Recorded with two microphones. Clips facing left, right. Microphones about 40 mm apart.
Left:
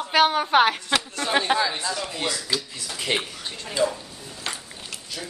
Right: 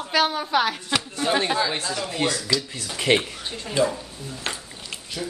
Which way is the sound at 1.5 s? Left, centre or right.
Left.